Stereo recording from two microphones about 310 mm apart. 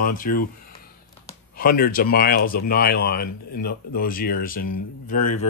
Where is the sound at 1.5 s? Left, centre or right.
Left.